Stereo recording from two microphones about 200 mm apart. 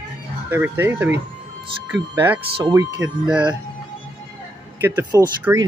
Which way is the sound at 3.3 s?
5° right (ahead or behind).